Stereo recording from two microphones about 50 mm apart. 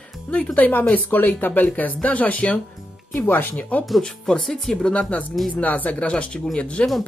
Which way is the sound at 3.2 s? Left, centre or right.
Left.